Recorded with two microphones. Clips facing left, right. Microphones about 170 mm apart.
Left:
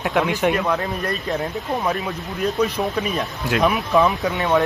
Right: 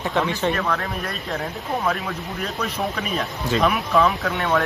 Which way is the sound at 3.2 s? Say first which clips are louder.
Right 1 dB; 15° left (ahead or behind).